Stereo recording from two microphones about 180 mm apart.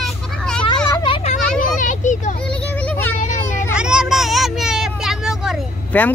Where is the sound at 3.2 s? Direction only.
45° left (ahead or behind).